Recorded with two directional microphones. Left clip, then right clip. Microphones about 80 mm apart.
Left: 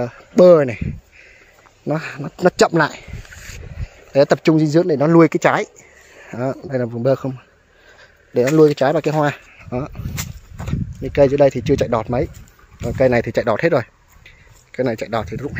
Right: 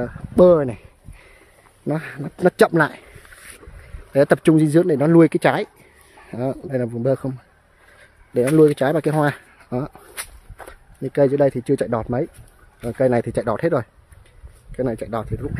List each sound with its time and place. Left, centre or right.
0.4 s speech: centre
1.9 s speech: centre
3.2 s a sound: centre
4.1 s speech: right
6.9 s speech: centre
8.3 s speech: centre; by 9.8 s right
11.1 s speech: right; by 14.3 s centre
14.7 s a sound: centre
15.0 s speech: centre